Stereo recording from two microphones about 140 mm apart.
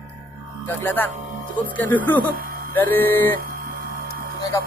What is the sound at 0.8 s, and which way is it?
Speech, 15° left (ahead or behind).